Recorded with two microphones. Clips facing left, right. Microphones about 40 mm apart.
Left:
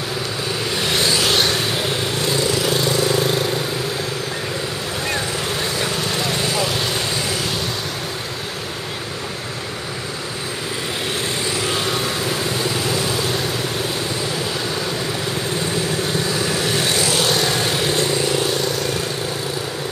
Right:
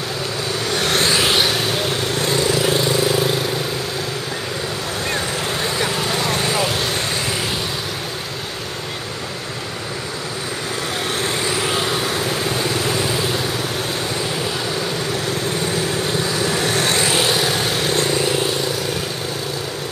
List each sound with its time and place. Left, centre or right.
0.7 s vehicle: right
1.1 s vehicle: centre
1.4 s vehicle: centre
2.6 s vehicle: centre
5.8 s vehicle: centre
11.7 s vehicle: centre
16.6 s vehicle: right
17.3 s vehicle: centre
18.0 s vehicle: centre